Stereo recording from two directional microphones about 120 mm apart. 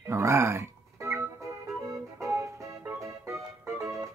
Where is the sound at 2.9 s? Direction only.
25° right (ahead or behind).